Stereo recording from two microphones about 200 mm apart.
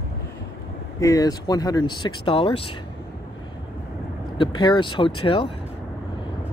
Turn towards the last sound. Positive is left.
turn(degrees=25)  # may be behind; listen again after turning